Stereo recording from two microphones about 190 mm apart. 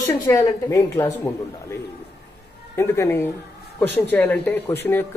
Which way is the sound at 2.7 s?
15° left (ahead or behind).